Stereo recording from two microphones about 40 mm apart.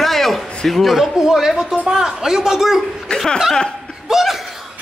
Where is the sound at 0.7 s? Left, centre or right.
Centre.